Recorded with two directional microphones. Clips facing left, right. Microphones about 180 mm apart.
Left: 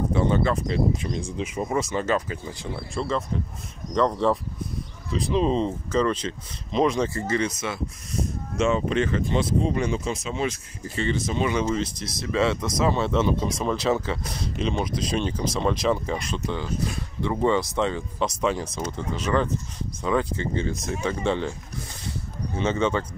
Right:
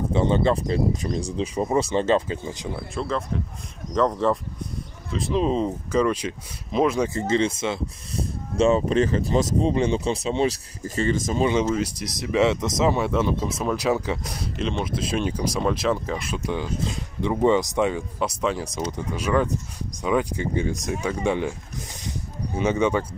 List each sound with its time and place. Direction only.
0.1 s speech: 25° right (ahead or behind)
2.7 s speech: centre (ahead or behind)
7.2 s speech: 25° right (ahead or behind)
8.5 s speech: 35° right (ahead or behind)
11.6 s speech: 10° right (ahead or behind)
14.6 s speech: centre (ahead or behind)
22.6 s speech: 15° right (ahead or behind)